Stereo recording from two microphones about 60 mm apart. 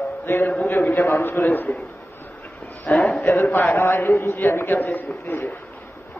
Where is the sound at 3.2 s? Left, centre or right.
Left.